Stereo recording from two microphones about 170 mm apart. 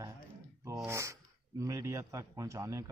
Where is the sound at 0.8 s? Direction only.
15° right (ahead or behind).